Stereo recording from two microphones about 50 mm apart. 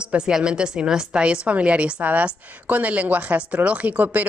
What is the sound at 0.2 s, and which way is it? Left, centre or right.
A woman's voice, centre.